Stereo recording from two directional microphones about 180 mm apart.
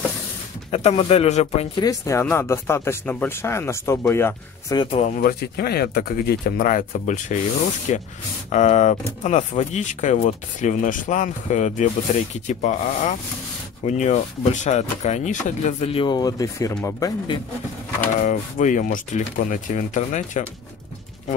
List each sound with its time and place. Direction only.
0.7 s speech: 35° left (ahead or behind)
1.8 s speech: 15° left (ahead or behind)
5.1 s speech: 55° left (ahead or behind); by 17.4 s 20° left (ahead or behind)
18.2 s speech: 45° left (ahead or behind)